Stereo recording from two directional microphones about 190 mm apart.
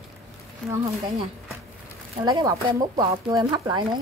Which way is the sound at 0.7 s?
15° right (ahead or behind).